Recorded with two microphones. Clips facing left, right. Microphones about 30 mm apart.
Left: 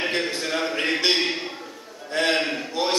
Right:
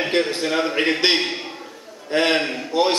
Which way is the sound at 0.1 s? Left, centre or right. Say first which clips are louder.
Right 5 dB; centre.